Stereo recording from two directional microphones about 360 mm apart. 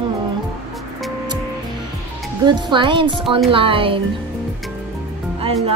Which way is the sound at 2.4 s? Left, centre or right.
Centre.